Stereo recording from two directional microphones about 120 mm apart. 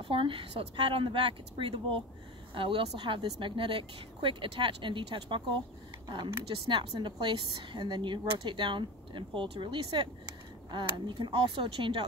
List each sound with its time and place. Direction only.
0.0 s a woman's voice: 45° right (ahead or behind)